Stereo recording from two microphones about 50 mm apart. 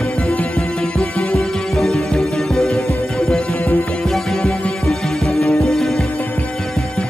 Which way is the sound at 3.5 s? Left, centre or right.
Left.